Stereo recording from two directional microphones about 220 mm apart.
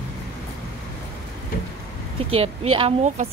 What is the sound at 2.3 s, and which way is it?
Speech, 25° right (ahead or behind).